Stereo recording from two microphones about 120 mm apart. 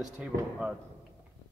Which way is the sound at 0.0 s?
5° right (ahead or behind).